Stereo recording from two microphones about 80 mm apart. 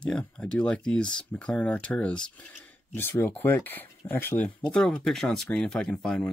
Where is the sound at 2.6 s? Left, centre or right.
Left.